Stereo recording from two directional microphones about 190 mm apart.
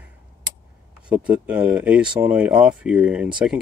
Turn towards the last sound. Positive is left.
turn(degrees=-5)  # may be behind; listen again after turning